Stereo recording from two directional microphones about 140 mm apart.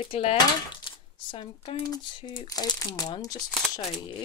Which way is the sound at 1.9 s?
30° left (ahead or behind).